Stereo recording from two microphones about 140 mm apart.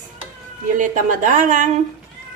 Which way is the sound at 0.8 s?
65° right (ahead or behind).